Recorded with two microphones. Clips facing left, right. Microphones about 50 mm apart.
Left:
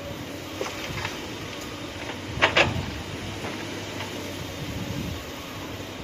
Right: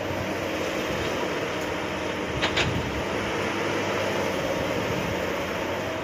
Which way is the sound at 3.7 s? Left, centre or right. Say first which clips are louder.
Right 8 dB; right.